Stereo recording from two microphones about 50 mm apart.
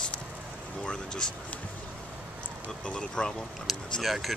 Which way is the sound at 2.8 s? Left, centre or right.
Centre.